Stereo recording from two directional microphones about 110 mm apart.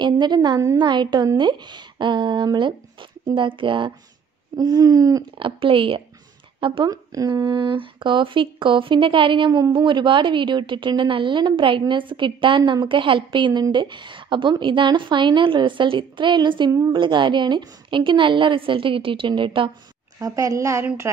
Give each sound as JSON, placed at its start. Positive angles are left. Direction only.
{"t": 0.0, "sound": "a sound", "side_deg": -40}
{"t": 0.7, "sound": "speech", "side_deg": -45}
{"t": 4.6, "sound": "a sound", "side_deg": -35}
{"t": 5.4, "sound": "speech", "side_deg": -50}
{"t": 6.9, "sound": "speech", "side_deg": -35}
{"t": 20.2, "sound": "a woman's voice", "side_deg": -30}